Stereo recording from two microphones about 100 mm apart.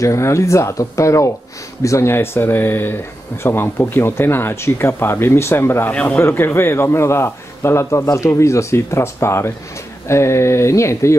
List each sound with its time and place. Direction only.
0.0 s a man's voice: 30° left (ahead or behind)